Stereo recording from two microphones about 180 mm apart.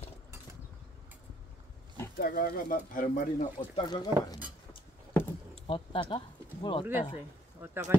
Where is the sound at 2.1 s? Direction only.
55° left (ahead or behind).